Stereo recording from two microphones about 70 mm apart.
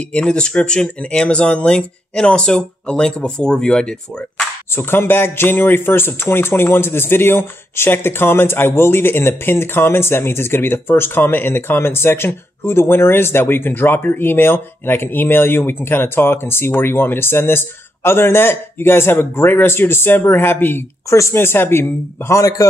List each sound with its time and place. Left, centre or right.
0.1 s speech: centre
4.7 s speech: left
21.1 s speech: left
22.4 s a man's voice: left